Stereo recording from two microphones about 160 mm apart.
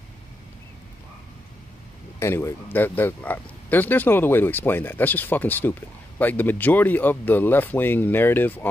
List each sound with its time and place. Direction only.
2.1 s speech: 15° left (ahead or behind)